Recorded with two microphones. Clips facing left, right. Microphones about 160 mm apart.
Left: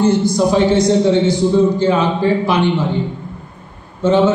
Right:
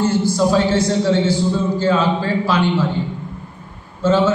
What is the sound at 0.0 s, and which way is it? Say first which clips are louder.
A man's voice: left 3 dB; 15° left (ahead or behind).